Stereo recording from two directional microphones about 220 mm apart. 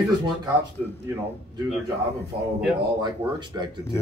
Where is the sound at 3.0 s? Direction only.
20° right (ahead or behind).